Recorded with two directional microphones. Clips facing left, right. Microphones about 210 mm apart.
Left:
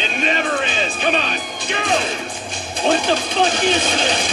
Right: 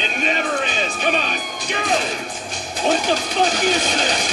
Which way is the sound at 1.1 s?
Centre (ahead or behind).